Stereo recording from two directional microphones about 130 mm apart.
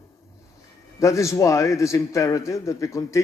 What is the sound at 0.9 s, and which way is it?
A man's voice, 25° left (ahead or behind).